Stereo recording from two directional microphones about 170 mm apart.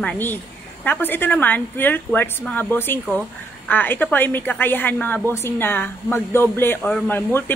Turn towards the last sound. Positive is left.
turn(degrees=10)  # may be behind; listen again after turning